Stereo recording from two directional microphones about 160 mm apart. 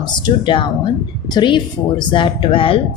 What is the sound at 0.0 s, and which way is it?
Speech, 30° left (ahead or behind).